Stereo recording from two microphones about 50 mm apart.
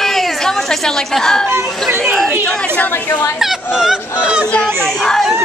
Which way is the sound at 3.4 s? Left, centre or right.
Centre.